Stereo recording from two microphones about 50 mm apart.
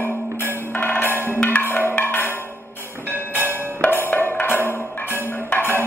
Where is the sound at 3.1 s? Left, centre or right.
Right.